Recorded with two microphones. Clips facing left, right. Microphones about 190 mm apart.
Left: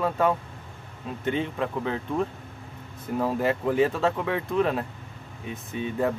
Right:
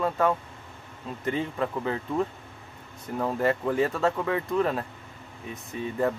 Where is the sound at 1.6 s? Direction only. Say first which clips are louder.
Even; centre (ahead or behind).